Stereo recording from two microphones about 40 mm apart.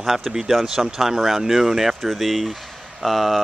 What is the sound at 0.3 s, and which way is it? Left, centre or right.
Speech, centre.